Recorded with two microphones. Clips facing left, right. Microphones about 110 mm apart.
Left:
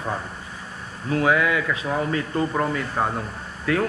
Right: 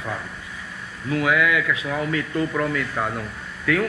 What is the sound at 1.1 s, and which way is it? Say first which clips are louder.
Speech: even; 35° left (ahead or behind).